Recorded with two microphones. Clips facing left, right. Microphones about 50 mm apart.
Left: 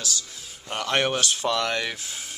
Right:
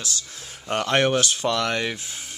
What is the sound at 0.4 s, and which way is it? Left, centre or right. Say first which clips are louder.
Music: right 5 dB; right.